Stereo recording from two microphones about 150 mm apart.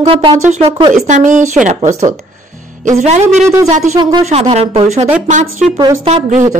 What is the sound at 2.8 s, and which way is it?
Speech, 50° right (ahead or behind).